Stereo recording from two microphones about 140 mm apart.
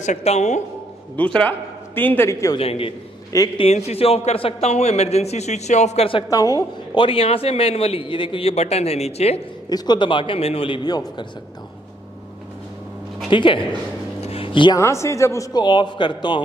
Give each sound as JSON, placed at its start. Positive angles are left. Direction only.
{"t": 0.0, "sound": "a woman's voice", "side_deg": 55}
{"t": 1.1, "sound": "a man's voice", "side_deg": 10}
{"t": 2.5, "sound": "a man's voice", "side_deg": 45}
{"t": 6.2, "sound": "a man's voice", "side_deg": 25}
{"t": 7.1, "sound": "a man's voice", "side_deg": 45}
{"t": 9.7, "sound": "a man's voice", "side_deg": 30}
{"t": 13.3, "sound": "a man's voice", "side_deg": 35}
{"t": 14.2, "sound": "a sound", "side_deg": 40}
{"t": 14.8, "sound": "a man's voice", "side_deg": 20}